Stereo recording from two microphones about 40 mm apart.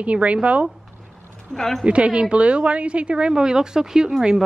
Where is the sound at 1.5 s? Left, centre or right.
Centre.